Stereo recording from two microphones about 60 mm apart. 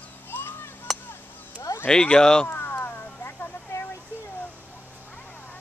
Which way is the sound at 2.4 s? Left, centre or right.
Left.